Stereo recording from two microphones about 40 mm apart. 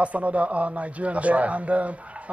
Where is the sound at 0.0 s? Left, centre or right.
Right.